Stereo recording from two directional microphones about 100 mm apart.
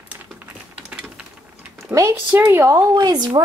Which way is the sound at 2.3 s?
20° right (ahead or behind).